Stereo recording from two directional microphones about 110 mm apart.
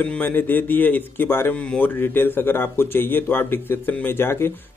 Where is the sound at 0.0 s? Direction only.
15° left (ahead or behind).